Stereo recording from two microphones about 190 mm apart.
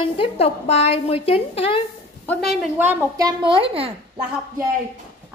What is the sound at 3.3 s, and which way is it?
Speech, 25° right (ahead or behind).